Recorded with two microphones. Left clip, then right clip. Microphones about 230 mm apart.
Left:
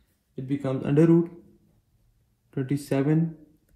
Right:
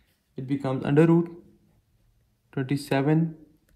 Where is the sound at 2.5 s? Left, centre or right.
Right.